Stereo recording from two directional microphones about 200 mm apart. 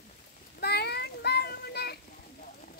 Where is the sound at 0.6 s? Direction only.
55° left (ahead or behind).